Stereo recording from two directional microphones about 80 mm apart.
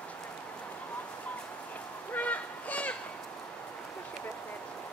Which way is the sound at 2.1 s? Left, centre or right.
Centre.